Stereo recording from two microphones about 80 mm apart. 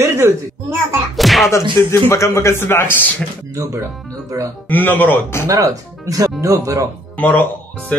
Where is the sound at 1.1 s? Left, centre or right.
Centre.